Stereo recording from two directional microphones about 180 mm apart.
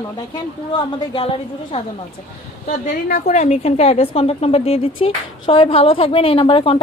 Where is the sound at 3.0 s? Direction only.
45° left (ahead or behind); by 6.8 s 30° left (ahead or behind).